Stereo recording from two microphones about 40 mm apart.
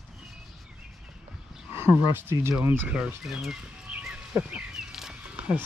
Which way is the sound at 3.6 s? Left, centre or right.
Right.